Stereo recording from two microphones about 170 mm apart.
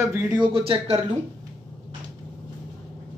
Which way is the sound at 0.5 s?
35° right (ahead or behind).